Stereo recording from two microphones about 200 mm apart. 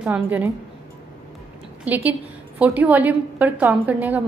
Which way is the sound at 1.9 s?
10° right (ahead or behind).